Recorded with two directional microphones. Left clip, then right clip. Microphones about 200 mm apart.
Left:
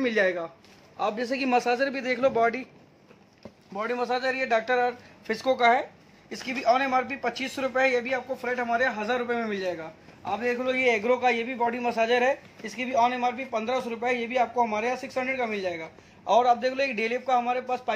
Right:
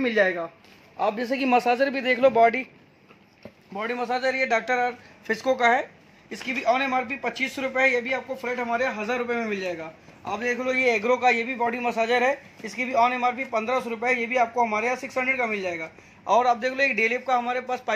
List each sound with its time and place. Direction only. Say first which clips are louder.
0.0 s speech: right 2 dB; 40° right (ahead or behind)
3.7 s speech: right 1 dB; 30° right (ahead or behind); by 17.9 s 10° right (ahead or behind)